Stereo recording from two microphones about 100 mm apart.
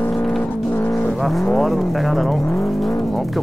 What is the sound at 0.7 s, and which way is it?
Vehicle, 20° left (ahead or behind).